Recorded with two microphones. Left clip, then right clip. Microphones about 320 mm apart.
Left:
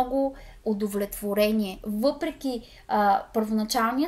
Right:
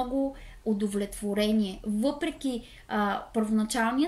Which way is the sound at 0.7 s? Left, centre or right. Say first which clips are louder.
Left 2 dB; centre.